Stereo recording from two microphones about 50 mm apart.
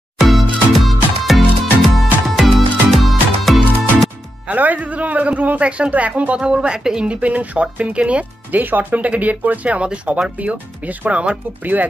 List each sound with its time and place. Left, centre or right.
0.2 s music: centre
4.5 s speech: right; by 7.1 s centre
7.1 s speech: right